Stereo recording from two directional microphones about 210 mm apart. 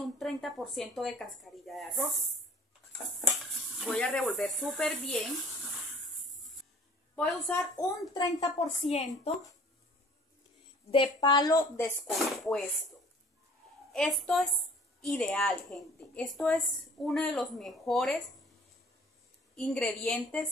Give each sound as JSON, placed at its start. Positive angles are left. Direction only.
{"t": 0.2, "sound": "a woman's voice", "side_deg": 0}
{"t": 3.7, "sound": "a woman's voice", "side_deg": 0}
{"t": 7.2, "sound": "a woman's voice", "side_deg": 10}
{"t": 8.5, "sound": "a woman's voice", "side_deg": 30}
{"t": 10.9, "sound": "a woman's voice", "side_deg": 20}
{"t": 12.1, "sound": "a woman's voice", "side_deg": 0}
{"t": 13.9, "sound": "a woman's voice", "side_deg": 0}
{"t": 19.5, "sound": "a woman's voice", "side_deg": 0}